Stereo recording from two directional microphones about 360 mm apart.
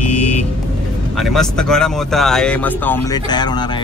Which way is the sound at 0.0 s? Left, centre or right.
Left.